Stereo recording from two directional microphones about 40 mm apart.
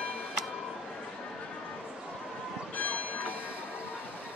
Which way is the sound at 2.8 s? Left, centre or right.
Left.